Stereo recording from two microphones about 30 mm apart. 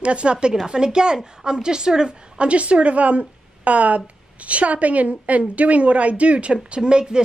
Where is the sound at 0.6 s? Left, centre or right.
Right.